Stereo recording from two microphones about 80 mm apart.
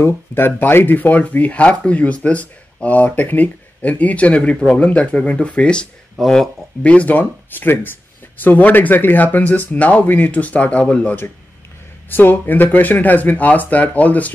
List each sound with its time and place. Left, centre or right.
0.0 s speech: left
6.1 s speech: centre
6.8 s speech: centre